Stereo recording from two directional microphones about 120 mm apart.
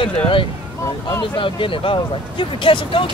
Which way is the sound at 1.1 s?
35° left (ahead or behind).